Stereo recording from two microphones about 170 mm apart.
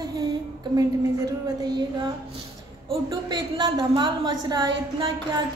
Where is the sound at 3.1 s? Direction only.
25° right (ahead or behind).